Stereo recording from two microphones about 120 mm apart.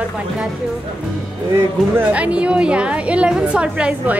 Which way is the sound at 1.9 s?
10° right (ahead or behind).